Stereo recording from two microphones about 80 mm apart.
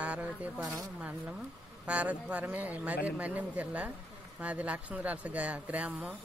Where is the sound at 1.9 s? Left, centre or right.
Centre.